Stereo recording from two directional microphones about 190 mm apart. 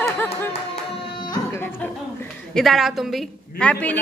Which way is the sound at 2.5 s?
Centre (ahead or behind).